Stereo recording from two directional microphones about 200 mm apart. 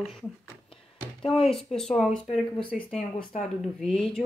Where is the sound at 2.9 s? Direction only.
30° left (ahead or behind).